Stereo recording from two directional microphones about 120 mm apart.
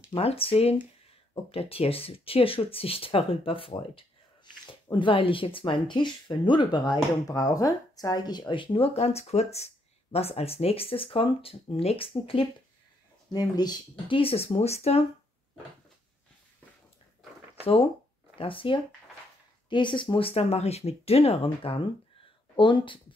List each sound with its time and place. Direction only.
0.1 s speech: 55° left (ahead or behind)
4.9 s speech: 45° left (ahead or behind)
13.3 s speech: 35° left (ahead or behind); by 15.0 s 60° left (ahead or behind)
18.4 s speech: 45° left (ahead or behind)